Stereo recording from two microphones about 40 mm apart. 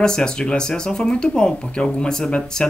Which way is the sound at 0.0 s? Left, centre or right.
Centre.